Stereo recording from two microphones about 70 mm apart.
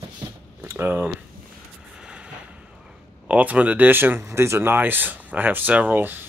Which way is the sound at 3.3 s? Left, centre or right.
Centre.